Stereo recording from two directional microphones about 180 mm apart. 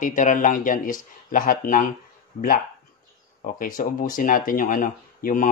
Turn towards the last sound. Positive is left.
turn(degrees=45)  # may be behind; listen again after turning